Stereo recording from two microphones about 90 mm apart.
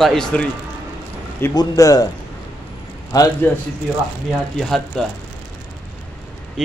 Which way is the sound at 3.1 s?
45° left (ahead or behind).